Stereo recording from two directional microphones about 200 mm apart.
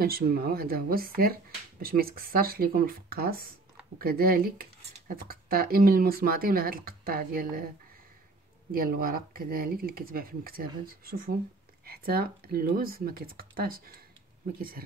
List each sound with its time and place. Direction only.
0.0 s speech: 50° right (ahead or behind)
8.7 s speech: 45° right (ahead or behind)